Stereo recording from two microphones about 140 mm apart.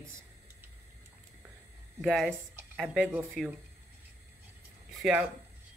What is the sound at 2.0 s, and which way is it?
Speech, 5° left (ahead or behind).